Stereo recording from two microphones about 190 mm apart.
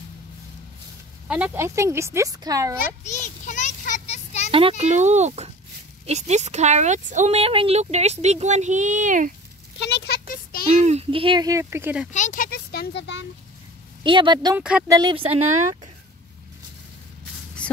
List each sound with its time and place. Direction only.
1.2 s speech: 5° right (ahead or behind)
3.0 s a sound: 40° left (ahead or behind)
4.5 s speech: 30° right (ahead or behind)
9.8 s a sound: 65° left (ahead or behind)
10.7 s a child's voice: 35° right (ahead or behind); by 12.1 s 10° right (ahead or behind)
12.1 s speech: 40° left (ahead or behind); by 13.3 s 70° left (ahead or behind)
14.0 s a child's voice: 25° right (ahead or behind)
14.6 s speech: 5° right (ahead or behind)
14.9 s a child's voice: 20° right (ahead or behind)
15.3 s speech: 35° right (ahead or behind)